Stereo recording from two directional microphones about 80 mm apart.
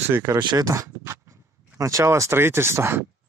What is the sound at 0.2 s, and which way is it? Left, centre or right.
Speech, right.